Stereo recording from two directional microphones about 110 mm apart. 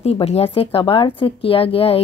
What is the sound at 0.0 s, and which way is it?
Speech, 70° left (ahead or behind).